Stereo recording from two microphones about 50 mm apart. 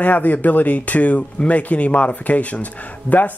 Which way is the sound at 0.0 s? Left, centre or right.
Left.